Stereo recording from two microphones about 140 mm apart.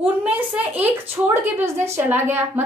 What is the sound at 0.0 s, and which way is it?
A woman's voice, 10° right (ahead or behind).